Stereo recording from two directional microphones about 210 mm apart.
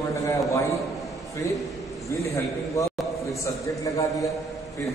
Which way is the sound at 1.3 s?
15° left (ahead or behind).